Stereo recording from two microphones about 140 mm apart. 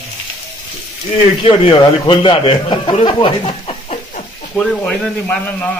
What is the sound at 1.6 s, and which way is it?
A man's voice, 35° left (ahead or behind).